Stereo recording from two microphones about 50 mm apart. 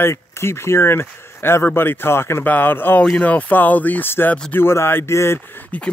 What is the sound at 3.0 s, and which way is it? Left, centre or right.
Speech, left.